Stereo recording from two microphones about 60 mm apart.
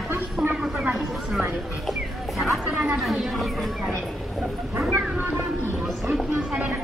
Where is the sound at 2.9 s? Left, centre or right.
Centre.